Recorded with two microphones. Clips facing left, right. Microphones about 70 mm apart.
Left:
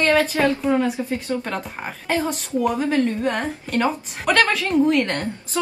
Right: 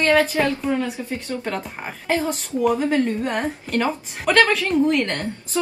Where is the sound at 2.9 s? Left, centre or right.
Centre.